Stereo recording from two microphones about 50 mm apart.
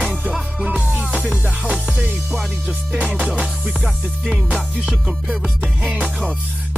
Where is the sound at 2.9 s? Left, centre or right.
Right.